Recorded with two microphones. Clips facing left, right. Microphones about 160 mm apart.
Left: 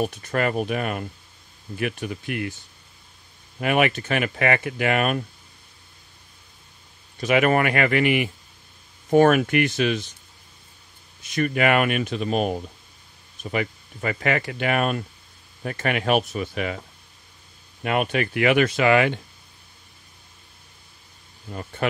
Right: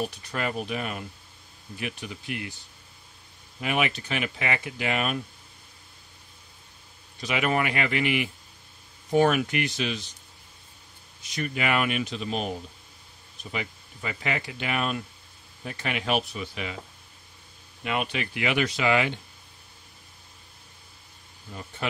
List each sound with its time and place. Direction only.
0.0 s speech: 50° left (ahead or behind)
3.6 s speech: 55° left (ahead or behind)
7.2 s speech: 55° left (ahead or behind)
11.2 s speech: 55° left (ahead or behind)
17.8 s speech: 50° left (ahead or behind)